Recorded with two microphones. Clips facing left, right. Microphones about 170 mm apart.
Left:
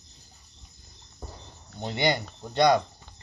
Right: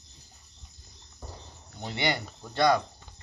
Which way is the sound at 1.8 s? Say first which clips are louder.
Left 4 dB; 20° left (ahead or behind).